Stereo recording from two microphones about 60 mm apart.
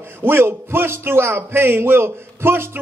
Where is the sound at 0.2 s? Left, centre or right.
Right.